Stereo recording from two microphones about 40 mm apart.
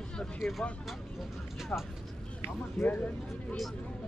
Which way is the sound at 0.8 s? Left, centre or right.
Centre.